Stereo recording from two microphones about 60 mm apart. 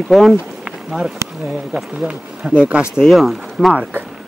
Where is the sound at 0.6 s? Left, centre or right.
Centre.